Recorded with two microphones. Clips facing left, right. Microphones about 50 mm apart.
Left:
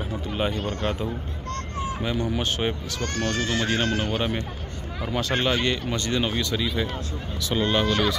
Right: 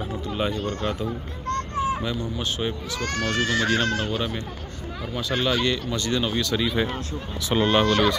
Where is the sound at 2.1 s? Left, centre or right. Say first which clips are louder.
Left 3 dB; left.